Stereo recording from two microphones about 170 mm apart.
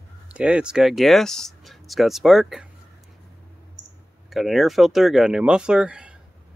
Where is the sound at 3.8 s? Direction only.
90° right.